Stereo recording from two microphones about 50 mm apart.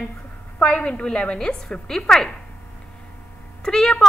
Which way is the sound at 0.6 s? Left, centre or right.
Left.